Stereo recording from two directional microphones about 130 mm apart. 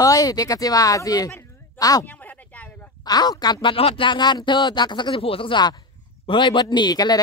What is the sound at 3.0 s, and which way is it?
Speech, 30° left (ahead or behind).